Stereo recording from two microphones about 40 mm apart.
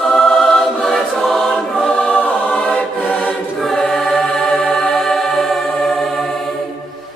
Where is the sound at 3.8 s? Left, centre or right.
Centre.